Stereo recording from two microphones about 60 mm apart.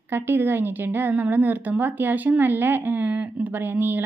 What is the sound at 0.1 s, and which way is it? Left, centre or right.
A woman's voice, right.